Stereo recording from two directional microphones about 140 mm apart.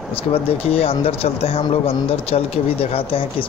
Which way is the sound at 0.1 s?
45° left (ahead or behind).